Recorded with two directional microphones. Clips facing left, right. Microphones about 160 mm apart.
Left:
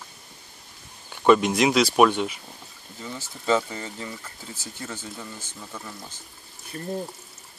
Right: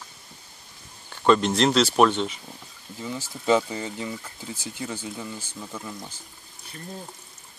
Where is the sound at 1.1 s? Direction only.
10° left (ahead or behind).